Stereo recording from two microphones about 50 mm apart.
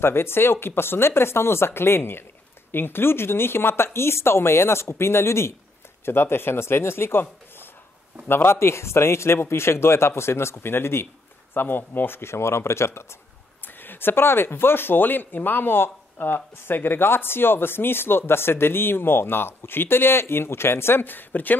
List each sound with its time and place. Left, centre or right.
0.0 s speech: left
11.5 s speech: left
12.2 s speech: left
13.7 s speech: left